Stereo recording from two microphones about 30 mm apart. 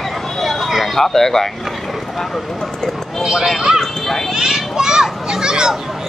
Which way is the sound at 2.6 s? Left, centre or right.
Centre.